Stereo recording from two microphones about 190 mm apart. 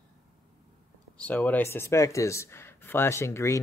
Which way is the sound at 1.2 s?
10° left (ahead or behind).